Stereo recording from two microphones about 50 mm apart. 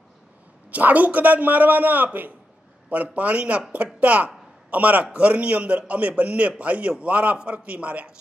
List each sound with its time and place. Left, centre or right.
0.7 s a man's voice: right